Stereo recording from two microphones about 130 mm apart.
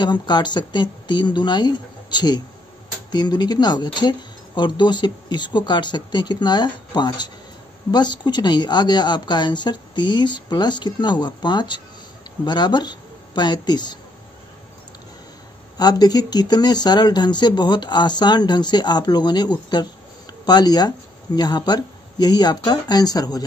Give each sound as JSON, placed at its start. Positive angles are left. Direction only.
{"t": 0.0, "sound": "a woman's voice", "side_deg": 35}
{"t": 15.8, "sound": "speech", "side_deg": 30}